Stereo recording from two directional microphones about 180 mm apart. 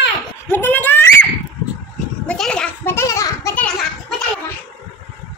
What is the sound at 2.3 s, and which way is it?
Children playing, 5° left (ahead or behind).